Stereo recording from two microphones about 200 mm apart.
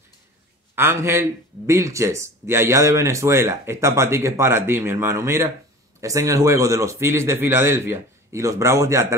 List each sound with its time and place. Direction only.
0.7 s speech: 15° right (ahead or behind)